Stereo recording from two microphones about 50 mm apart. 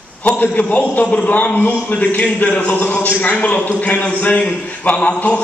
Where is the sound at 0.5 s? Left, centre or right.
Left.